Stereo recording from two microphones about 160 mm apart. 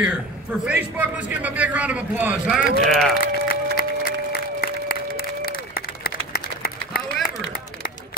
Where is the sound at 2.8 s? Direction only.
Centre (ahead or behind).